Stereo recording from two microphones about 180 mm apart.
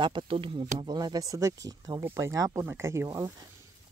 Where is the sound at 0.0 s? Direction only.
25° right (ahead or behind).